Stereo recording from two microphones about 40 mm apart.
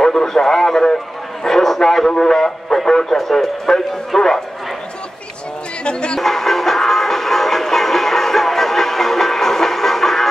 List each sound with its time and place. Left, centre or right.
0.0 s speech: centre
5.9 s music: left
6.1 s music: centre